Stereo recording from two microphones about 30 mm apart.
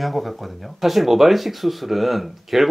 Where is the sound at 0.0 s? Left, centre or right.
Centre.